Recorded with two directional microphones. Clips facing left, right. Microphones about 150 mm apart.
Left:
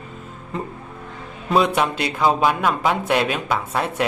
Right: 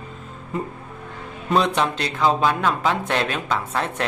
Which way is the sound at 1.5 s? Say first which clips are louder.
Left 2 dB; 10° left (ahead or behind).